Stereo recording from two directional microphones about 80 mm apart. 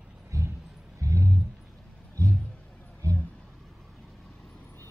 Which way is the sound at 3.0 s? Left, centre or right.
Right.